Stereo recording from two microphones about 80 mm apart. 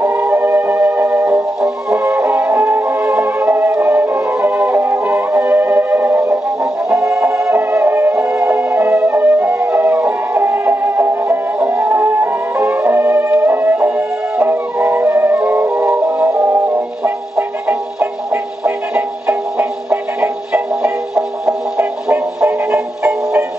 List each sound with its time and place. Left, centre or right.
0.0 s music: right
1.6 s music: centre
2.0 s music: right
3.0 s music: centre
7.0 s music: centre
7.5 s music: right
16.3 s music: right
17.0 s music: right